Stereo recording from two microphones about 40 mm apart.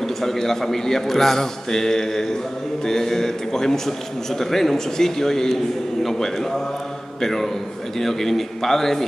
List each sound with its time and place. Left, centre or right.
0.2 s a man's voice: centre
7.2 s a sound: centre
8.0 s a man's voice: centre